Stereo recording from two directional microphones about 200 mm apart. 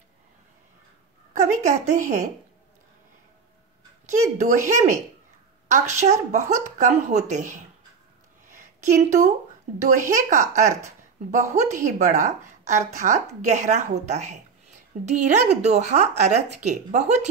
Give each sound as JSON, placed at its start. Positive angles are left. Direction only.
{"t": 1.3, "sound": "a woman's voice", "side_deg": -35}
{"t": 4.1, "sound": "a woman's voice", "side_deg": -40}
{"t": 8.5, "sound": "a sound", "side_deg": -35}
{"t": 9.8, "sound": "a woman's voice", "side_deg": -40}